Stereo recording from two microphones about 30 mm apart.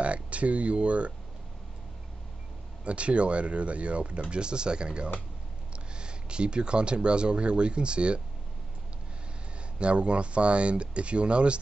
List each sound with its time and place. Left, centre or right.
0.0 s speech: right
2.8 s speech: right
4.2 s speech: right
9.8 s speech: right